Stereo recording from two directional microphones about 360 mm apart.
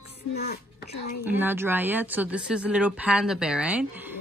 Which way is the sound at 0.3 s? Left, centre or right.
Left.